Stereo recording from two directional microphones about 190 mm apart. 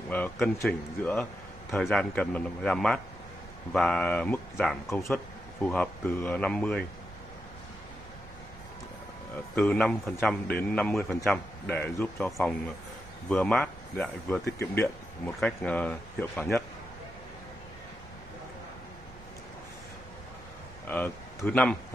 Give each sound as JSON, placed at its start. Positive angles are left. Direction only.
{"t": 0.1, "sound": "speech", "side_deg": 5}
{"t": 9.6, "sound": "a man's voice", "side_deg": 5}
{"t": 15.4, "sound": "speech", "side_deg": 5}
{"t": 20.8, "sound": "speech", "side_deg": 10}